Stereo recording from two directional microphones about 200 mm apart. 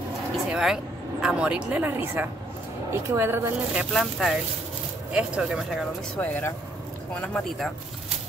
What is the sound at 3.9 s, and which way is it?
Speech, centre (ahead or behind).